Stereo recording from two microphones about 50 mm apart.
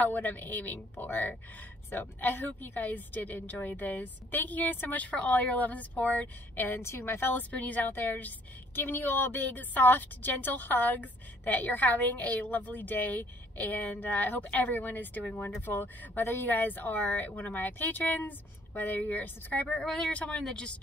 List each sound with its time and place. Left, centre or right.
0.0 s a woman's voice: left
6.8 s a woman's voice: left
7.3 s a woman's voice: left
7.9 s a woman's voice: left
16.2 s a woman's voice: left
16.4 s a woman's voice: left
19.8 s speech: centre
20.1 s a woman's voice: left